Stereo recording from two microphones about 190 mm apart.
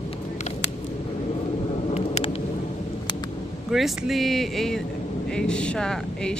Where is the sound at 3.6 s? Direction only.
Centre (ahead or behind).